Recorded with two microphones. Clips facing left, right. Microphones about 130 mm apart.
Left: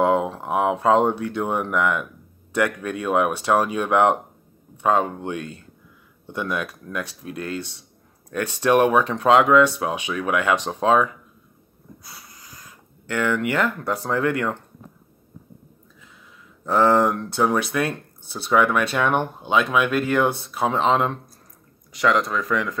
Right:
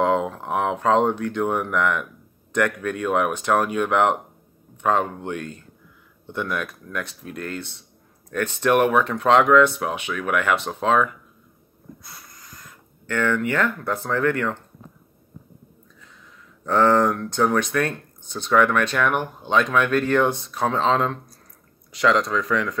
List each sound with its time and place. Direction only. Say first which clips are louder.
0.0 s a sound: left 1 dB; 15° left (ahead or behind)
0.4 s speech: left 2 dB; 15° left (ahead or behind)
12.0 s a sound: even; 10° left (ahead or behind)
13.5 s speech: even; 15° left (ahead or behind)
16.6 s speech: even; 15° left (ahead or behind)
19.5 s speech: even; 10° left (ahead or behind)
21.9 s speech: right 1 dB; centre (ahead or behind)